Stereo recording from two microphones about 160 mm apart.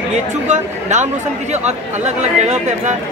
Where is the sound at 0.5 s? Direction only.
45° right (ahead or behind).